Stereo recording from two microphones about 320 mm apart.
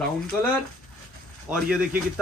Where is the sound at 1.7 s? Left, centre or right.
Centre.